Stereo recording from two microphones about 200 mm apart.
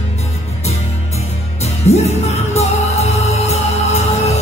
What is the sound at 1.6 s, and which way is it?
Music, 35° left (ahead or behind).